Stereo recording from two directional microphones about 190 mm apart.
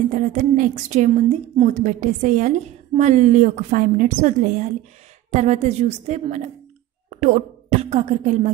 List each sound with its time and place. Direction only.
0.1 s a woman's voice: 40° right (ahead or behind)